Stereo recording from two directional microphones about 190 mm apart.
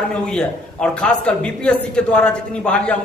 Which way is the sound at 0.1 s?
5° left (ahead or behind).